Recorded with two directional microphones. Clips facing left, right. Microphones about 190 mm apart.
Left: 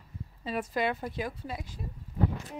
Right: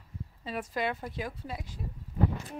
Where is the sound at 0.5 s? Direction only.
10° left (ahead or behind).